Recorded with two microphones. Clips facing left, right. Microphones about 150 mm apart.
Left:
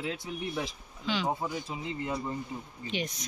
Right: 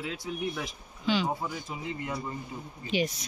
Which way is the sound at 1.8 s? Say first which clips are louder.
Even; 25° left (ahead or behind).